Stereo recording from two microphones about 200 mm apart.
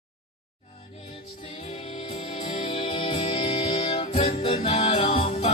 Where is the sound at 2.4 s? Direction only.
25° left (ahead or behind).